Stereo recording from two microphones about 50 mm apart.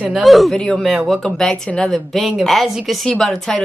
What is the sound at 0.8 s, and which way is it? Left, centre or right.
Speech, centre.